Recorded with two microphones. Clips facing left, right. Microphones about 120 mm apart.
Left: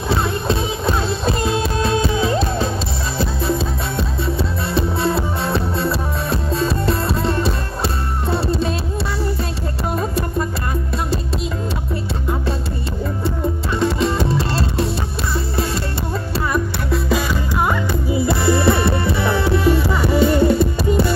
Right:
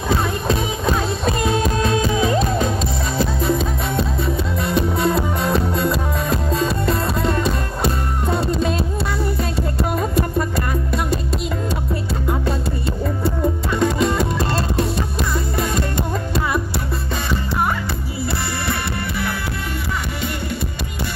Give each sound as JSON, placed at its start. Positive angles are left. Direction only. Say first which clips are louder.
{"t": 0.1, "sound": "music", "louder": "even", "side_deg": 30}
{"t": 13.2, "sound": "music", "louder": "right 2 dB", "side_deg": 30}
{"t": 18.1, "sound": "music", "louder": "left 10 dB", "side_deg": 20}